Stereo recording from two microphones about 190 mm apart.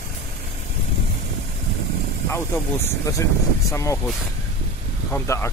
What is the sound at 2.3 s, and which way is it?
Speech, 15° left (ahead or behind).